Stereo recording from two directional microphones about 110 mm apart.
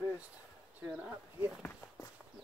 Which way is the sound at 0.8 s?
10° right (ahead or behind).